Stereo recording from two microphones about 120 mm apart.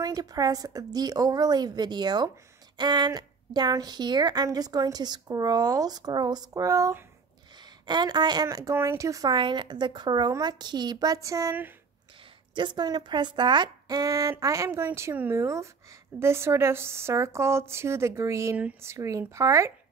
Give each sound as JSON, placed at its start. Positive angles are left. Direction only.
{"t": 0.0, "sound": "speech", "side_deg": -30}
{"t": 9.3, "sound": "speech", "side_deg": -40}
{"t": 12.5, "sound": "speech", "side_deg": -40}